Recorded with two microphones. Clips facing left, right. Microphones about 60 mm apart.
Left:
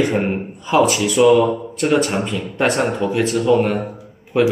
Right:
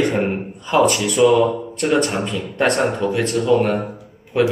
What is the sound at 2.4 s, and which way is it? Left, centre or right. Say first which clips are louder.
A man's voice: right 1 dB; centre.